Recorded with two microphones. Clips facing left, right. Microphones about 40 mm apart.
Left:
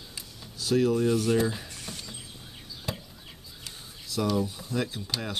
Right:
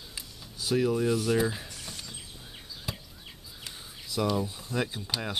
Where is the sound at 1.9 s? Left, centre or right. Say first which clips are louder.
Left 2 dB; centre.